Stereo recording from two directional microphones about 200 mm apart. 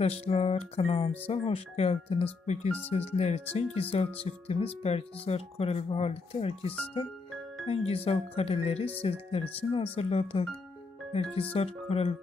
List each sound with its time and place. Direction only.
0.0 s speech: 30° left (ahead or behind)
11.5 s speech: 30° left (ahead or behind)